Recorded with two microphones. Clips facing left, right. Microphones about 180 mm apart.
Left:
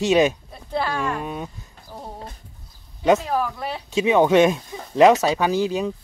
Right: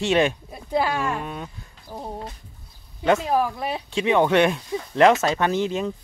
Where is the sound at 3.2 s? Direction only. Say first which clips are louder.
Right 2 dB; 20° right (ahead or behind).